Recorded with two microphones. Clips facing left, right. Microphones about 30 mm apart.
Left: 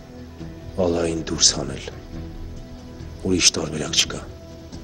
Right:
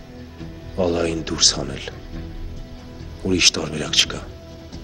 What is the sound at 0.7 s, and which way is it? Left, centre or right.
A man's voice, right.